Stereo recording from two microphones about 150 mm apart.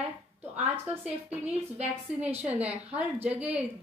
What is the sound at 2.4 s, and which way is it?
Speech, 10° right (ahead or behind).